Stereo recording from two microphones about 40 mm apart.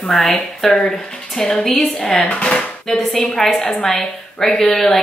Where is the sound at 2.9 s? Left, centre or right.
Centre.